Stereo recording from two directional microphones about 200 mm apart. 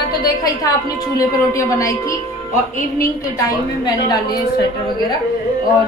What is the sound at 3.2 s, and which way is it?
A woman's voice, 20° left (ahead or behind).